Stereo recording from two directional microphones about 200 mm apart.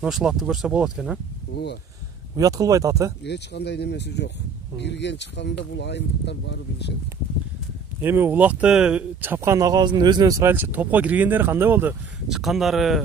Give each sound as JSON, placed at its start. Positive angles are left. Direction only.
{"t": 0.0, "sound": "speech", "side_deg": 0}
{"t": 2.3, "sound": "speech", "side_deg": -15}
{"t": 3.3, "sound": "speech", "side_deg": 60}
{"t": 8.0, "sound": "speech", "side_deg": -10}